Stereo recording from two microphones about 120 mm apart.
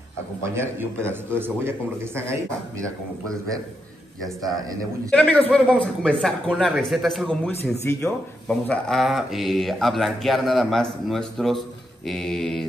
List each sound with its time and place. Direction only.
0.6 s speech: 20° right (ahead or behind)
5.1 s speech: 10° left (ahead or behind)